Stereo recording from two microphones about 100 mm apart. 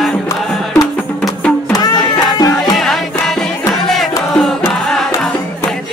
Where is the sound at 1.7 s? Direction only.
40° left (ahead or behind).